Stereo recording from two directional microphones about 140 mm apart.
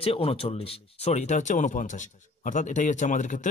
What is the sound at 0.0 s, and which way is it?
Speech, 45° left (ahead or behind).